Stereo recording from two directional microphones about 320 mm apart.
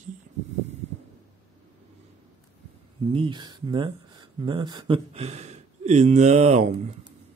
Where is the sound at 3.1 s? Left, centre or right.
Centre.